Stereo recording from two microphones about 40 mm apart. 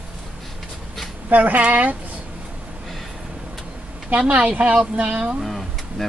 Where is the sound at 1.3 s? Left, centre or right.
Right.